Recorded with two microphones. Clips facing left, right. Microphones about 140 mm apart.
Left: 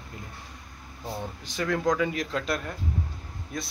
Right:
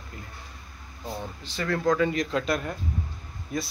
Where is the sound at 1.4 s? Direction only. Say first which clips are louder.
Even; 15° left (ahead or behind).